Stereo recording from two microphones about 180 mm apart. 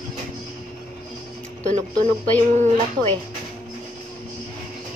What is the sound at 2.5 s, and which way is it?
Speech, 40° right (ahead or behind).